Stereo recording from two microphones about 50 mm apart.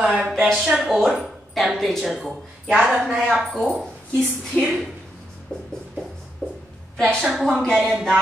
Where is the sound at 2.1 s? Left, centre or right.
Centre.